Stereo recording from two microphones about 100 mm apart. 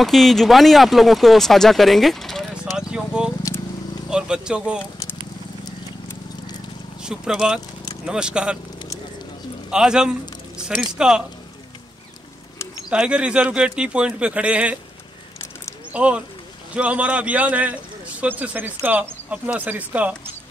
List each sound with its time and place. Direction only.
0.0 s speech: centre (ahead or behind)
2.9 s speech: 10° right (ahead or behind)
7.0 s speech: 5° right (ahead or behind)
9.7 s speech: 5° right (ahead or behind)
12.9 s speech: 10° right (ahead or behind)
15.9 s speech: 10° right (ahead or behind)